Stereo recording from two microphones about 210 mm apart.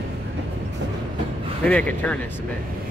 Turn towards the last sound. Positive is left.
turn(degrees=5)  # may be behind; listen again after turning